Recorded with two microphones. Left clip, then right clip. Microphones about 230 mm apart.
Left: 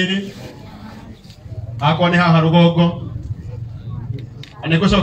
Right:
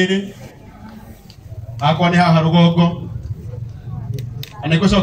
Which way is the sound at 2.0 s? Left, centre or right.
Right.